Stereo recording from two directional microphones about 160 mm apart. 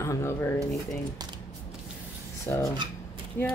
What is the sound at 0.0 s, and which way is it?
Speech, 15° left (ahead or behind).